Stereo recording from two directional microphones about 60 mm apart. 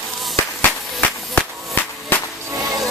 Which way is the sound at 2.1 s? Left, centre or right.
Left.